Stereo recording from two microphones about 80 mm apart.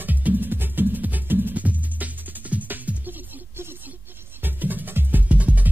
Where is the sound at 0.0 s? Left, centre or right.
Right.